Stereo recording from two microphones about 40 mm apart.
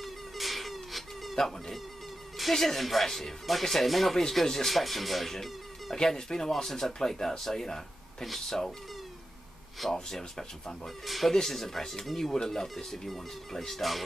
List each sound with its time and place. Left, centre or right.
0.0 s mosquito: centre
1.3 s speech: centre
9.8 s speech: centre
11.1 s speech: centre